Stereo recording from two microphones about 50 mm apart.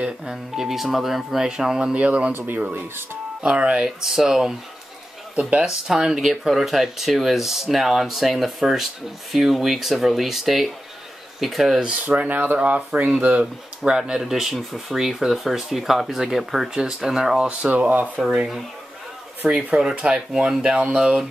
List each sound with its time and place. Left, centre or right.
0.2 s speech: centre
2.0 s speech: right
2.3 s speech: right
3.4 s speech: right
4.0 s speech: centre
5.9 s speech: centre
12.1 s speech: right; by 17.6 s centre
17.6 s speech: right
19.4 s speech: centre